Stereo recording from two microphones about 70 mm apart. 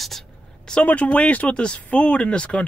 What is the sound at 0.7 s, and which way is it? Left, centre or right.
Speech, left.